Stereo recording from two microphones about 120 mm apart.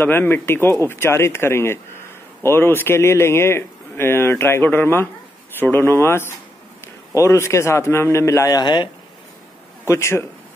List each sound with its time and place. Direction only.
0.0 s speech: 15° left (ahead or behind); by 8.9 s 40° left (ahead or behind)
9.8 s speech: 25° left (ahead or behind)